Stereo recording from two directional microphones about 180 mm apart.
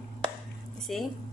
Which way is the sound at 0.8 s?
Centre (ahead or behind).